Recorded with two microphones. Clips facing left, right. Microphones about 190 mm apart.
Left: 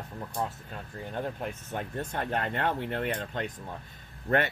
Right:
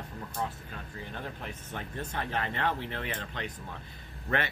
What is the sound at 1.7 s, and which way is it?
Speech, 50° left (ahead or behind).